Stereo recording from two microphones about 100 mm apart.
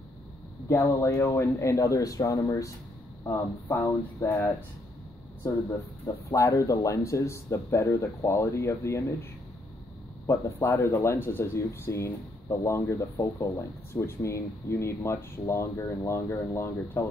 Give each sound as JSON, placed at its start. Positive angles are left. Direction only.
{"t": 0.7, "sound": "speech", "side_deg": 25}
{"t": 3.6, "sound": "speech", "side_deg": 25}
{"t": 10.2, "sound": "speech", "side_deg": 25}